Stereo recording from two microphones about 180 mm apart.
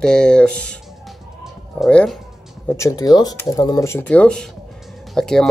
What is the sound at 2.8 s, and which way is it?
Speech, 15° left (ahead or behind).